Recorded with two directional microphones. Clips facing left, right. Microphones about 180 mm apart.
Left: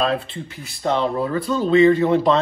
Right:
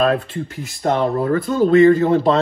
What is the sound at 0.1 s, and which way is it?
Speech, 50° right (ahead or behind).